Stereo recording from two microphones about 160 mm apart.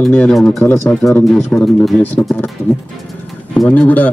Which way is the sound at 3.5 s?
5° left (ahead or behind).